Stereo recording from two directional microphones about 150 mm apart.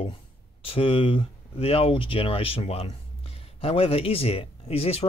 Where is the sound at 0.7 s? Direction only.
35° left (ahead or behind).